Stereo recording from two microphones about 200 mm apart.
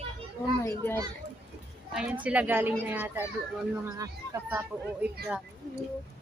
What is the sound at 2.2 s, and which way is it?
Speech, 5° right (ahead or behind).